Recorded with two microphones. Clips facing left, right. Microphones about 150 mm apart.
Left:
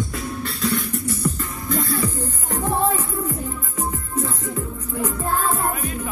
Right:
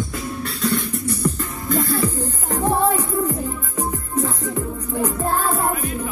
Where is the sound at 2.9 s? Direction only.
35° right (ahead or behind).